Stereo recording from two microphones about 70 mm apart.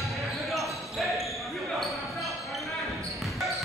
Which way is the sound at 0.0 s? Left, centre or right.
Centre.